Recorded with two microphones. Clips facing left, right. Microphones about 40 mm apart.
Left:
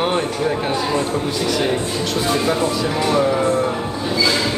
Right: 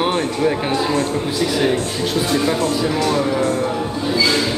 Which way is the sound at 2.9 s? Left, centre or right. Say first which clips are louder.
Left 1 dB; centre.